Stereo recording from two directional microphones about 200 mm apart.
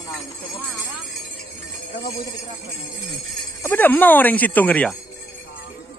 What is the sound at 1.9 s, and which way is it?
Speech, 45° left (ahead or behind).